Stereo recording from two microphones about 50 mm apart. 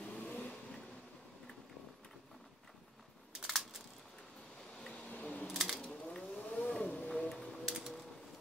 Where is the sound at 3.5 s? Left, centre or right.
Centre.